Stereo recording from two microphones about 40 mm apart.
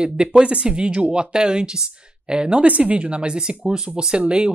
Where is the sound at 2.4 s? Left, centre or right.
Right.